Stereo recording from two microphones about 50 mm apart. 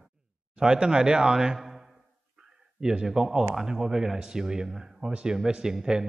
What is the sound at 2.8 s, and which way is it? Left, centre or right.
A man's voice, centre.